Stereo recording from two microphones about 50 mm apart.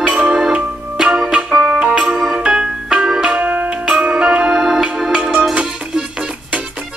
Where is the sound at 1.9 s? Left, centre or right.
Centre.